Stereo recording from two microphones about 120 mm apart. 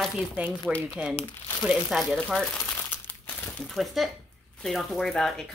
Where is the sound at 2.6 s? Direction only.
15° left (ahead or behind).